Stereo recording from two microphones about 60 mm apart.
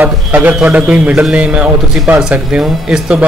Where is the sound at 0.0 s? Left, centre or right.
Right.